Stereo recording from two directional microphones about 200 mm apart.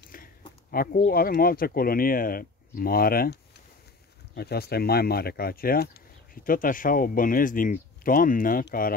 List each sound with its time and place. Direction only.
0.1 s a sound: 45° left (ahead or behind)
0.7 s speech: 45° left (ahead or behind)
4.4 s speech: 50° left (ahead or behind)